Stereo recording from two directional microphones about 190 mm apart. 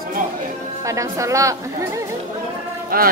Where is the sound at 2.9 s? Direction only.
50° right (ahead or behind).